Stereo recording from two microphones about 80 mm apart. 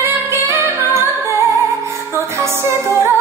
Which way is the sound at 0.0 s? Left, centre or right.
Right.